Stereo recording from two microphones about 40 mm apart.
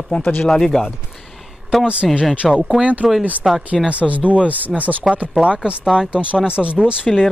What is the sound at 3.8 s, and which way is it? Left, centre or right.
Speech, right.